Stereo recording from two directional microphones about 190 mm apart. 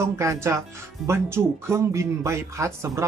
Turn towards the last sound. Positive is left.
turn(degrees=-15)  # may be behind; listen again after turning